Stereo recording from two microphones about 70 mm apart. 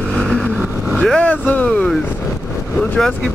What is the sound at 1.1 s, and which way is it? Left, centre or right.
Speech, left.